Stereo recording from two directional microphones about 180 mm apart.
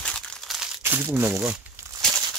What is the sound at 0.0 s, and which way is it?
Crumpling, 5° left (ahead or behind).